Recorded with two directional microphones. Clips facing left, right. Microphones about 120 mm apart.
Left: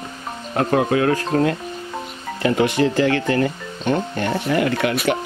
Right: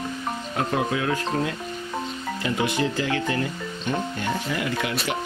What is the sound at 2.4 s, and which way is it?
Speech, 65° left (ahead or behind).